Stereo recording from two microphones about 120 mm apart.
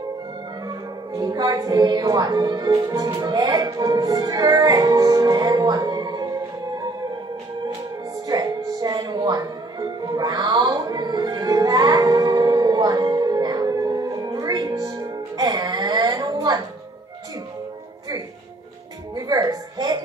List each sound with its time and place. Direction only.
1.1 s speech: 35° right (ahead or behind)
8.3 s music: 30° right (ahead or behind)
19.1 s a sound: 30° right (ahead or behind)